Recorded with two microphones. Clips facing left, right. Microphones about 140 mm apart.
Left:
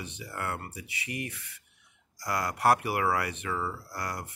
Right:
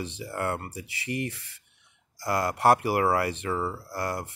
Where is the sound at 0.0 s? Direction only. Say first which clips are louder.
Right 6 dB; 30° right (ahead or behind).